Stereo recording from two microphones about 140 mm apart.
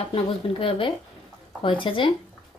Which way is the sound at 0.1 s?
40° left (ahead or behind).